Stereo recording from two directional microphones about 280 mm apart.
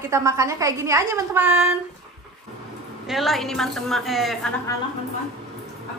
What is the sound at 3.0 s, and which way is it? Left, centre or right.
A woman's voice, centre.